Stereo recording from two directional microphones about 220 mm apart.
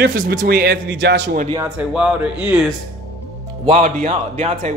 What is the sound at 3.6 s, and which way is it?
Speech, 35° right (ahead or behind).